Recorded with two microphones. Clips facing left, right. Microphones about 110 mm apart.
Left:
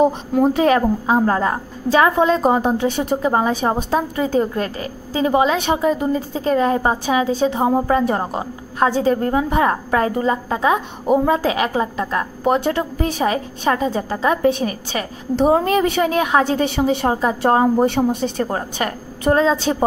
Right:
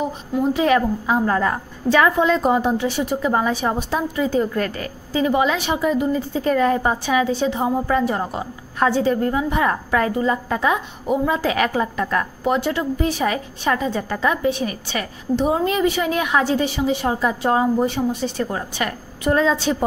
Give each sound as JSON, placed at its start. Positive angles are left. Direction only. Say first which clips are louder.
{"t": 0.0, "sound": "a woman's voice", "louder": "left 6 dB", "side_deg": 45}
{"t": 3.2, "sound": "a woman's voice", "louder": "left 1 dB", "side_deg": 30}
{"t": 4.6, "sound": "a woman's voice", "louder": "even", "side_deg": 25}
{"t": 8.9, "sound": "a woman's voice", "louder": "left 2 dB", "side_deg": 40}
{"t": 11.4, "sound": "a woman's voice", "louder": "left 1 dB", "side_deg": 25}
{"t": 12.4, "sound": "a woman's voice", "louder": "left 3 dB", "side_deg": 45}
{"t": 14.4, "sound": "a woman's voice", "louder": "left 4 dB", "side_deg": 45}
{"t": 17.1, "sound": "a woman's voice", "louder": "left 3 dB", "side_deg": 35}
{"t": 17.8, "sound": "a woman's voice", "louder": "left 4 dB", "side_deg": 60}